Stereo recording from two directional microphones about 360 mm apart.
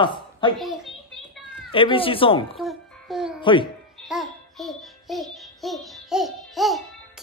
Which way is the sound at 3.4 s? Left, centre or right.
Centre.